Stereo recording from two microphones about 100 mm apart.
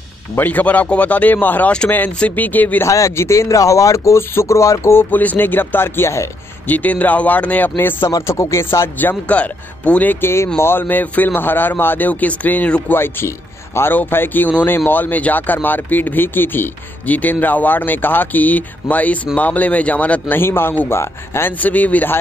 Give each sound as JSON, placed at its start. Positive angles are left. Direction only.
{"t": 0.4, "sound": "a man's voice", "side_deg": 15}
{"t": 2.9, "sound": "speech", "side_deg": 30}
{"t": 5.1, "sound": "a man's voice", "side_deg": 15}